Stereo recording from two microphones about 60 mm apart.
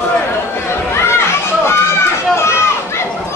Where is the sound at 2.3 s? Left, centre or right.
Left.